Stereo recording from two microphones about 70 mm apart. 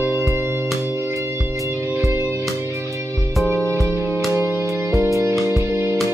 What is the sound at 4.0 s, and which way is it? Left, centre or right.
Music, right.